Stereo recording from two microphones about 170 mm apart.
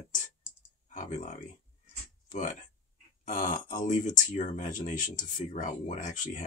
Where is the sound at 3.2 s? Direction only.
50° left (ahead or behind).